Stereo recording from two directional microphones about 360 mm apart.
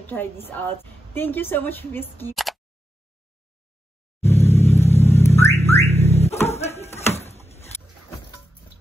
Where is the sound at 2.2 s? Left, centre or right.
Centre.